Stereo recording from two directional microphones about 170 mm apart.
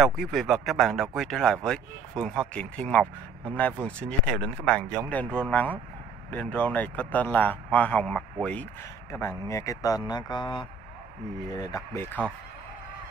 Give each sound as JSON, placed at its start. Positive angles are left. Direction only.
{"t": 0.0, "sound": "a man's voice", "side_deg": 0}
{"t": 9.5, "sound": "speech", "side_deg": 20}